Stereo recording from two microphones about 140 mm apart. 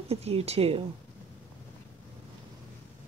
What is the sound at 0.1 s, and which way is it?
Speech, 45° right (ahead or behind).